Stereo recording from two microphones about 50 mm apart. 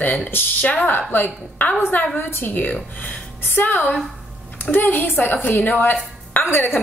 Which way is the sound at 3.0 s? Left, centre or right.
Left.